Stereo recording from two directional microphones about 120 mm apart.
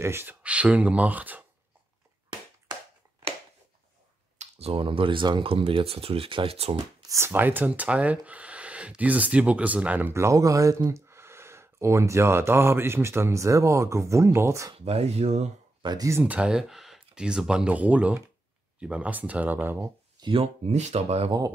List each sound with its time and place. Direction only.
0.0 s speech: 20° right (ahead or behind)
4.4 s speech: 60° right (ahead or behind)
7.0 s speech: 25° right (ahead or behind)
14.9 s speech: 60° right (ahead or behind)
15.8 s speech: 35° right (ahead or behind)
16.1 s speech: 15° right (ahead or behind)
20.2 s speech: 45° right (ahead or behind); by 21.3 s 65° right (ahead or behind)